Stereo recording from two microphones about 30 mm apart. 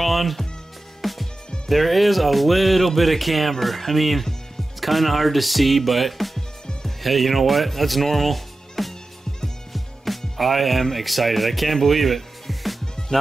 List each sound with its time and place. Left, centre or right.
0.0 s music: centre
1.7 s speech: centre